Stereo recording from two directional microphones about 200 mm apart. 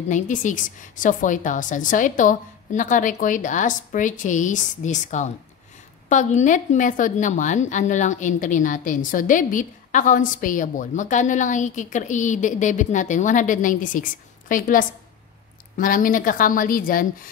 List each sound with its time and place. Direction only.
0.1 s a woman's voice: 40° left (ahead or behind)